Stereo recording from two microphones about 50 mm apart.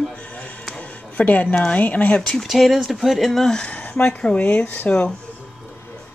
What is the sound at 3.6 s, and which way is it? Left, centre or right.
Speech, left.